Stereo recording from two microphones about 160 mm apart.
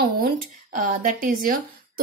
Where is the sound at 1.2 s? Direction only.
60° right (ahead or behind).